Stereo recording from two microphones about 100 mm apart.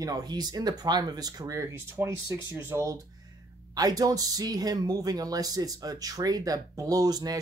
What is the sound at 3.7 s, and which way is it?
Speech, 40° right (ahead or behind).